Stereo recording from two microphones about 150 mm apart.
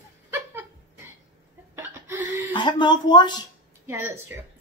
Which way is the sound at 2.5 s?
30° left (ahead or behind).